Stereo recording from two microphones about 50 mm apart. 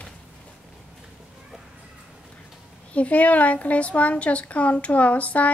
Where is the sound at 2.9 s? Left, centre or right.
Left.